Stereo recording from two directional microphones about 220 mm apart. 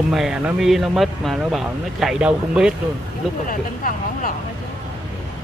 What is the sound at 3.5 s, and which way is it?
Speech, 40° left (ahead or behind).